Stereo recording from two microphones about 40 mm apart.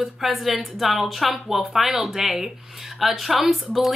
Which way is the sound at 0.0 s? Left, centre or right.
Centre.